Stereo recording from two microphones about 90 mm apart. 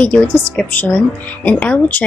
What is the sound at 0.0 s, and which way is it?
Speech, 15° left (ahead or behind).